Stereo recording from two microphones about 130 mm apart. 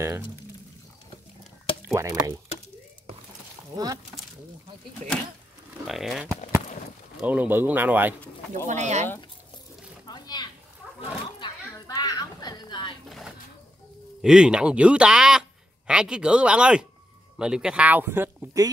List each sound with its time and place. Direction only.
1.8 s speech: 20° right (ahead or behind)
3.7 s speech: 25° right (ahead or behind)
5.9 s speech: centre (ahead or behind)
8.6 s speech: 65° right (ahead or behind)
10.0 s a sound: 30° left (ahead or behind)
14.2 s speech: 5° right (ahead or behind)